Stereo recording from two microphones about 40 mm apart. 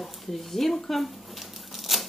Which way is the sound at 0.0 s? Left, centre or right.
Centre.